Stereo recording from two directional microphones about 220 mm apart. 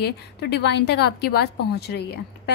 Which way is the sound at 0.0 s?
50° left (ahead or behind).